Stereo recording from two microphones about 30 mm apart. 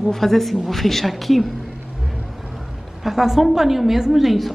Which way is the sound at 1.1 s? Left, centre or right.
Centre.